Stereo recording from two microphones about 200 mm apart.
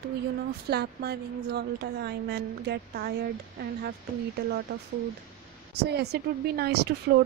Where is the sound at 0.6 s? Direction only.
55° right (ahead or behind).